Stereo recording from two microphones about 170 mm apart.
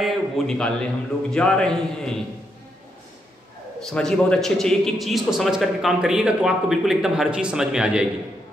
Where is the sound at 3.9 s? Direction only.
5° left (ahead or behind).